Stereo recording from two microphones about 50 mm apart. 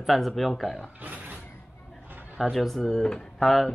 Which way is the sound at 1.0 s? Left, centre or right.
Right.